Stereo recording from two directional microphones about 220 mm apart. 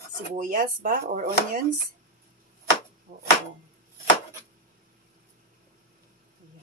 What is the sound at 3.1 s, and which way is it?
Speech, 40° right (ahead or behind).